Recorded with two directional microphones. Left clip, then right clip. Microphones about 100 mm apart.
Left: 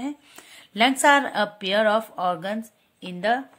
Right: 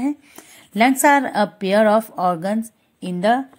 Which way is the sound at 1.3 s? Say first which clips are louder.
Right 5 dB; 35° right (ahead or behind).